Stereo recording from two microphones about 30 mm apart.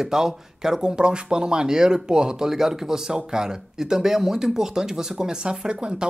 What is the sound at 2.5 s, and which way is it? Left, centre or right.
Speech, centre.